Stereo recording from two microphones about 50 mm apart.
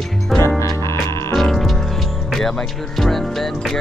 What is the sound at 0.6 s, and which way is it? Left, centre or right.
Music, left.